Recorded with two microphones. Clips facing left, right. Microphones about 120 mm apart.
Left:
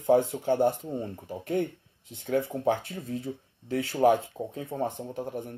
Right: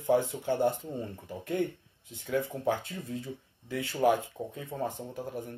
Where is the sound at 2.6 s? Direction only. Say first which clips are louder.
Left 3 dB; 50° left (ahead or behind).